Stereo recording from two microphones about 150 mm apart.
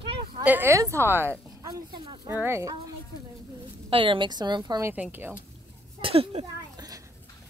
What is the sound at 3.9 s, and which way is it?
Speech, 35° right (ahead or behind).